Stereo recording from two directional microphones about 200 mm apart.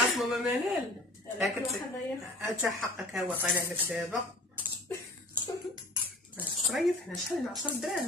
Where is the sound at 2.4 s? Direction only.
5° right (ahead or behind).